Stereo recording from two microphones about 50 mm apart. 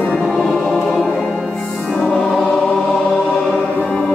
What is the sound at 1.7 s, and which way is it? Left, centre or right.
Music, centre.